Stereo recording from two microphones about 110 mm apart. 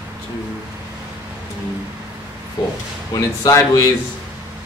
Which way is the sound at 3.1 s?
35° left (ahead or behind).